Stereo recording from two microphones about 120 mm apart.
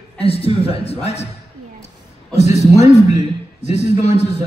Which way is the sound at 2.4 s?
65° left (ahead or behind).